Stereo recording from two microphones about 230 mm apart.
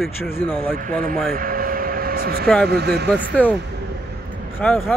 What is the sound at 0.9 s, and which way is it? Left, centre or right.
Speech, right.